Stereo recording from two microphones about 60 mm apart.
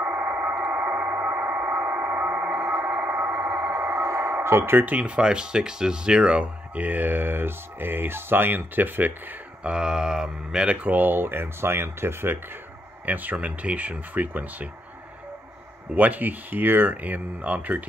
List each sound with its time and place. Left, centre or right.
0.0 s radio: right
2.9 s a sound: right
3.5 s a sound: right
3.8 s radio: right
4.7 s speech: right
9.6 s speech: centre; by 12.4 s right
13.0 s speech: right
15.9 s speech: right